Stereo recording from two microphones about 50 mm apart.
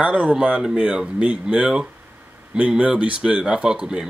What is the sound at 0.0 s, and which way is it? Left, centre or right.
Speech, centre.